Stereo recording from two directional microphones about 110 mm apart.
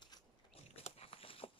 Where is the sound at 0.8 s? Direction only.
65° left (ahead or behind).